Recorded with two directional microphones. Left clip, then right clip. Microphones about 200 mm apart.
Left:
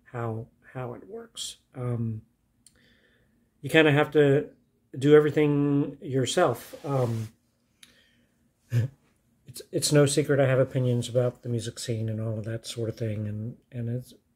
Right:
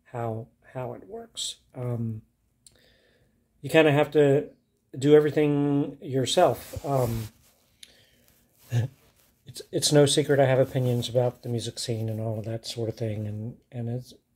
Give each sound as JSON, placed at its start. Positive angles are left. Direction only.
{"t": 0.0, "sound": "speech", "side_deg": 15}
{"t": 3.6, "sound": "speech", "side_deg": 15}
{"t": 8.6, "sound": "a sound", "side_deg": 20}
{"t": 9.5, "sound": "speech", "side_deg": 15}